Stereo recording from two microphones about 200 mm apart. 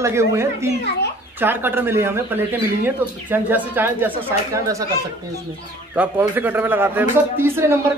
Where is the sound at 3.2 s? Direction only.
10° right (ahead or behind).